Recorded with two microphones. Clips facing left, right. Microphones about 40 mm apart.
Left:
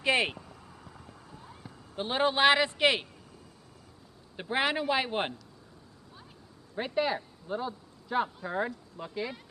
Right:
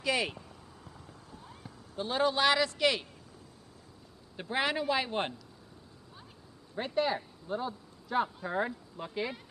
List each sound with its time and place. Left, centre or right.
0.0 s speech: left
1.6 s a sound: centre
2.0 s a man's voice: left
4.4 s speech: centre
6.8 s speech: centre